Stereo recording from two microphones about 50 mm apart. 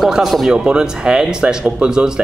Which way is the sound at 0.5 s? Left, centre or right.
Centre.